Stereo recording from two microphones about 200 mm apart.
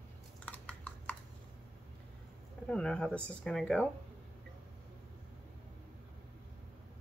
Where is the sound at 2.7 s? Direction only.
5° left (ahead or behind).